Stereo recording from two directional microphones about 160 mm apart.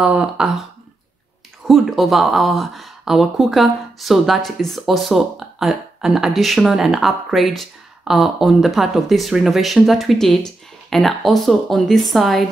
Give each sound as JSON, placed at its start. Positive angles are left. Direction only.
{"t": 0.0, "sound": "speech", "side_deg": -5}
{"t": 1.7, "sound": "speech", "side_deg": 0}